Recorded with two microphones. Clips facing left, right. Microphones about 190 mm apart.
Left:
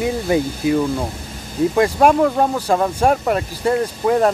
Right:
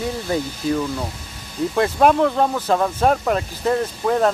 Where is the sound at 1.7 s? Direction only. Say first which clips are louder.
Left 1 dB; 10° left (ahead or behind).